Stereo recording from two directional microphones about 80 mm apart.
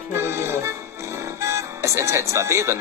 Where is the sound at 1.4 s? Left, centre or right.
Right.